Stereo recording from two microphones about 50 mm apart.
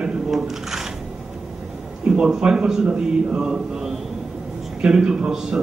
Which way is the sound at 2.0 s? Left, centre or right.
Centre.